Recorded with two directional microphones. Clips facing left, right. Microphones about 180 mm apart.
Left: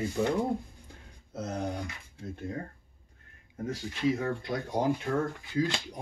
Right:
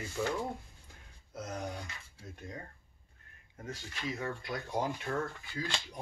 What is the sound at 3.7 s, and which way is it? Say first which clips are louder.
Speech: left 11 dB; 30° left (ahead or behind).